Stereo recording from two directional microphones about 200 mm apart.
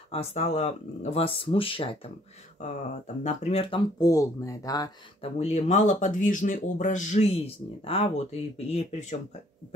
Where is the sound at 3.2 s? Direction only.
30° left (ahead or behind).